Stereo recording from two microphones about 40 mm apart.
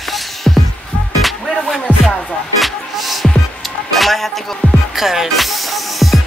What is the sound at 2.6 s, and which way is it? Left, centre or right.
Music, centre.